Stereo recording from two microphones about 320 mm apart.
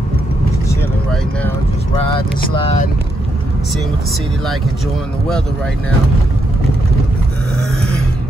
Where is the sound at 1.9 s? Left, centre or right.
Centre.